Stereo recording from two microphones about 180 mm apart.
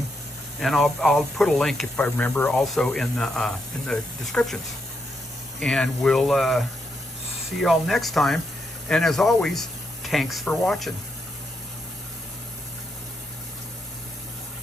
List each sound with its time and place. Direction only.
0.6 s speech: centre (ahead or behind)
5.6 s speech: 5° left (ahead or behind)
7.6 s speech: centre (ahead or behind)